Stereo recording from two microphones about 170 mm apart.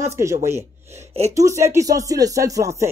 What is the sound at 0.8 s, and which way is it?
Speech, 40° right (ahead or behind).